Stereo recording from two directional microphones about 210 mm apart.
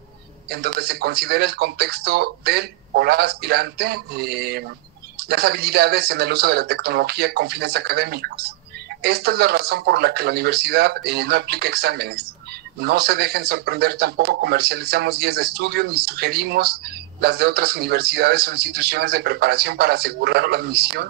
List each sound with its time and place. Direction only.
0.5 s speech: 50° right (ahead or behind)